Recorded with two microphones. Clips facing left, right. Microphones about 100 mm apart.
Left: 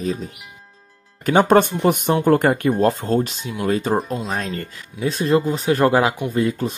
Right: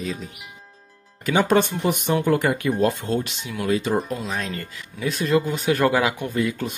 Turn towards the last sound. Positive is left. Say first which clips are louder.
# left 4 dB
turn(degrees=35)  # may be behind; listen again after turning